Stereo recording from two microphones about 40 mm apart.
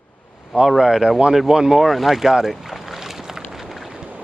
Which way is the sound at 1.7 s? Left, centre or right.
Centre.